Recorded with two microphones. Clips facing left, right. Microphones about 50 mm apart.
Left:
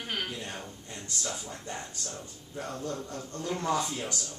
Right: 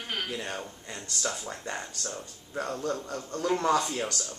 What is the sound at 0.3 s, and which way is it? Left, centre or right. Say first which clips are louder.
Speech: right 4 dB; right.